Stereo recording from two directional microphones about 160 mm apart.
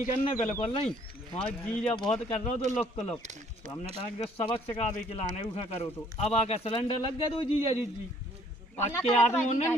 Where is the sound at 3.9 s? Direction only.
35° left (ahead or behind).